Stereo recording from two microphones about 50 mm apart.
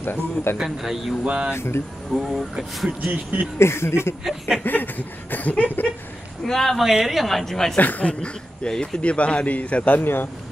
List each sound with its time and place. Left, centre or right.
0.0 s a man's voice: left
0.7 s speech: centre
1.2 s speech: centre
1.5 s speech: left
2.1 s speech: centre
3.1 s speech: right
3.5 s speech: left
4.2 s speech: centre
4.6 s a sound: left
6.4 s a woman's voice: centre
7.7 s a sound: left
8.1 s a man's voice: centre